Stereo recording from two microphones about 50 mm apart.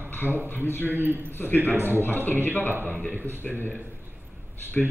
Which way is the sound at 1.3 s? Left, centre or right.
Left.